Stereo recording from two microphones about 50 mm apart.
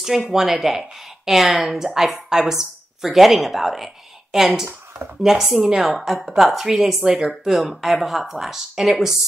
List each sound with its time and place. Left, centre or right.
0.0 s a woman's voice: centre